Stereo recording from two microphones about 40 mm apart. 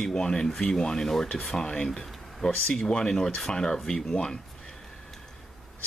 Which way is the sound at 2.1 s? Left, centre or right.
Centre.